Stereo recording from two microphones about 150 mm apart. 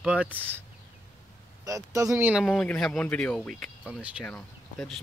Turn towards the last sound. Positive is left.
turn(degrees=5)  # may be behind; listen again after turning